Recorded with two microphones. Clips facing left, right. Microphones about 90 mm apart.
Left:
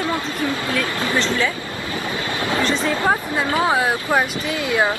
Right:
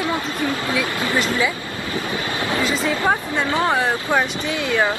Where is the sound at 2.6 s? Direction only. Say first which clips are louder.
Left 1 dB; 5° right (ahead or behind).